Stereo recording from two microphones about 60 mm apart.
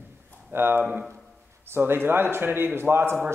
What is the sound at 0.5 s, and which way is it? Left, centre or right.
A man's voice, right.